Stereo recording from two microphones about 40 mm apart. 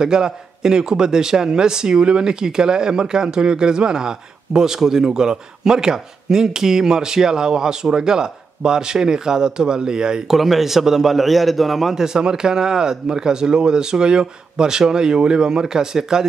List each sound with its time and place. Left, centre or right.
0.0 s a man's voice: centre
10.3 s a man's voice: centre